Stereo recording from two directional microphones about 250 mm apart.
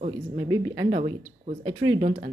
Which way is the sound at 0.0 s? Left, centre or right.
Right.